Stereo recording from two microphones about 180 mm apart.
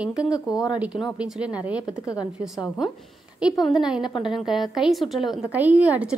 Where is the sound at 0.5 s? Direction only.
20° left (ahead or behind).